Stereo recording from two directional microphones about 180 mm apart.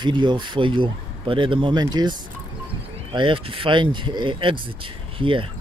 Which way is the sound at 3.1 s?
30° right (ahead or behind).